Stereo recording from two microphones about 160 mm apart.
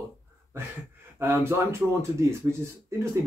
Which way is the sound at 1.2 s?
15° right (ahead or behind).